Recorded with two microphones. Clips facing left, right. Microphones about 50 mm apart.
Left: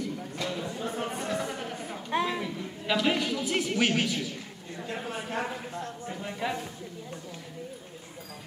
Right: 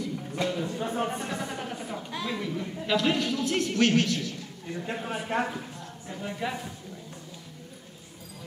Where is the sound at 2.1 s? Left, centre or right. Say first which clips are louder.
Left 7 dB; left.